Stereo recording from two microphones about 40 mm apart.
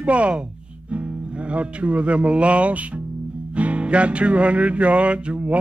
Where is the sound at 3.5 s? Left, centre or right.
Right.